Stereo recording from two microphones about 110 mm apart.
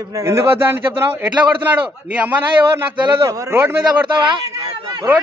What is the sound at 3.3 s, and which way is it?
Speech, 30° right (ahead or behind).